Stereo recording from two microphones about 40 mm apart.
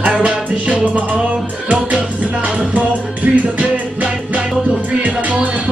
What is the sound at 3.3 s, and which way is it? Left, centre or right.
Music, right.